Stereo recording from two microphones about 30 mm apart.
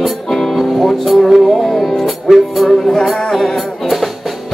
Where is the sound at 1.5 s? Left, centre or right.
Centre.